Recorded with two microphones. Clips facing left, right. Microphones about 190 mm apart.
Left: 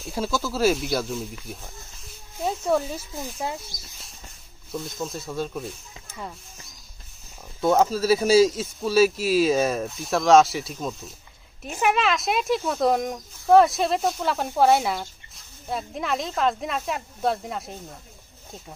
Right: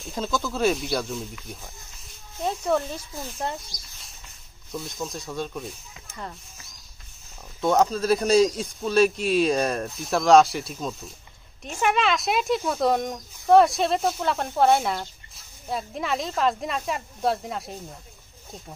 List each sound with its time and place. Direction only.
0.0 s speech: 5° left (ahead or behind)
7.6 s speech: 5° left (ahead or behind)